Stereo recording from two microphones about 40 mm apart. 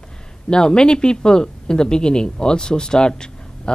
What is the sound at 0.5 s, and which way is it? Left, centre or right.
Speech, centre.